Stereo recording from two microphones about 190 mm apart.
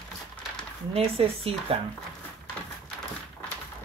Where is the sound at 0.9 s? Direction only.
30° right (ahead or behind).